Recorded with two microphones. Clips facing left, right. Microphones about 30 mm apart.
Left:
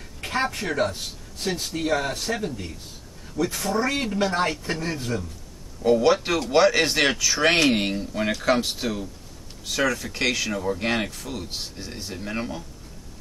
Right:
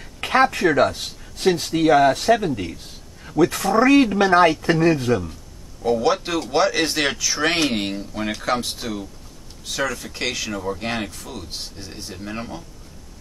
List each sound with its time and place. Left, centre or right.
0.2 s speech: right
4.9 s speech: right
5.8 s speech: centre